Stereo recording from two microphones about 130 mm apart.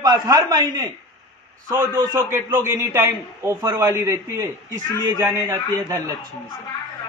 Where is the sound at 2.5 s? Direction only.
20° right (ahead or behind).